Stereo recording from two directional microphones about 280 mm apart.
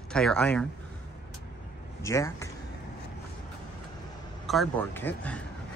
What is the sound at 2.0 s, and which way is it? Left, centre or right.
Speech, centre.